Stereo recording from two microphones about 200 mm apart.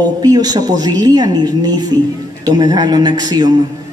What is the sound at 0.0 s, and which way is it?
A woman's voice, 20° right (ahead or behind).